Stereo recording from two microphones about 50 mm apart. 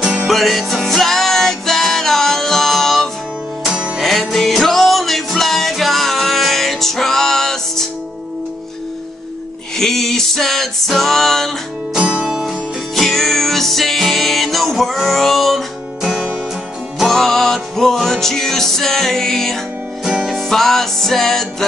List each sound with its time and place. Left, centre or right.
0.0 s music: centre
0.3 s music: centre
3.6 s music: centre
4.0 s music: centre
9.8 s music: centre
11.9 s music: centre
12.9 s music: centre
16.0 s music: centre
17.1 s music: centre